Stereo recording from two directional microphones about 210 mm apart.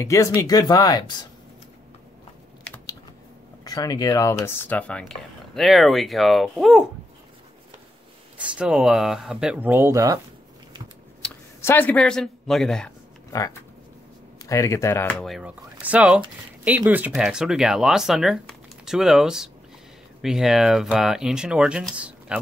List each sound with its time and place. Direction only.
0.0 s speech: 15° left (ahead or behind)
2.6 s typing: 10° left (ahead or behind)
3.6 s speech: 15° left (ahead or behind); by 6.8 s centre (ahead or behind)
8.4 s speech: 5° right (ahead or behind)
11.2 s speech: 10° left (ahead or behind)
13.3 s speech: 15° left (ahead or behind); by 22.4 s 5° right (ahead or behind)